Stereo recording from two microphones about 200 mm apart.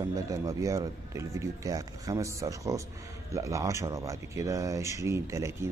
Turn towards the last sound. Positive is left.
turn(degrees=-15)  # may be behind; listen again after turning